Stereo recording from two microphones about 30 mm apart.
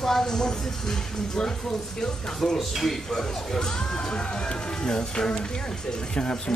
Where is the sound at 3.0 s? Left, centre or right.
Centre.